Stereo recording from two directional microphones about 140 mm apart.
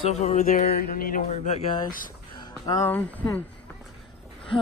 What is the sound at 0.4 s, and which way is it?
Mantra, 85° left.